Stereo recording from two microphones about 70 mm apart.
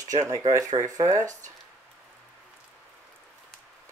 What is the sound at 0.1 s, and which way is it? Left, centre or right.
Speech, right.